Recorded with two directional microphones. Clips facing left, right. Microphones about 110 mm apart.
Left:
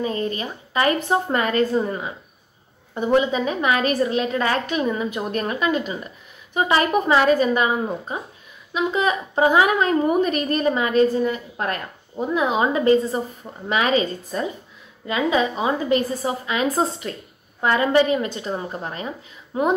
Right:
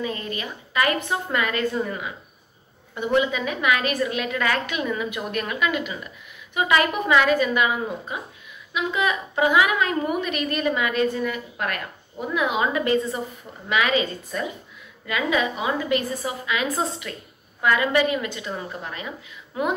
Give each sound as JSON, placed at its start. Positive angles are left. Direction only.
{"t": 0.0, "sound": "a woman's voice", "side_deg": 35}